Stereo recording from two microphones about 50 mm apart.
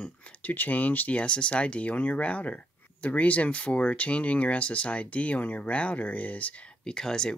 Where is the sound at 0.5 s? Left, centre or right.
Left.